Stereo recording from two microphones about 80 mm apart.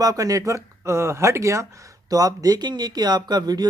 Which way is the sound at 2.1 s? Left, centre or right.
Right.